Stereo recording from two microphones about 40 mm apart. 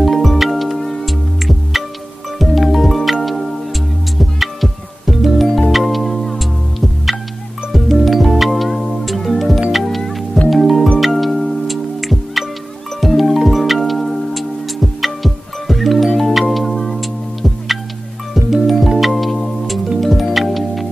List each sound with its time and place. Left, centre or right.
0.0 s music: centre